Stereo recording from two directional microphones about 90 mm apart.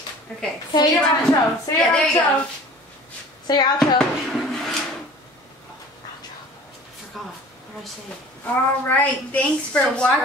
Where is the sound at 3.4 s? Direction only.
50° left (ahead or behind).